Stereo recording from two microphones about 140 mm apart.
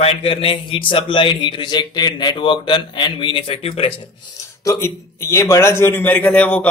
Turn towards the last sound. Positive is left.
turn(degrees=10)  # may be behind; listen again after turning